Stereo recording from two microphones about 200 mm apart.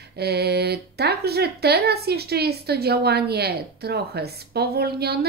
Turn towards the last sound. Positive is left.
turn(degrees=-55)  # may be behind; listen again after turning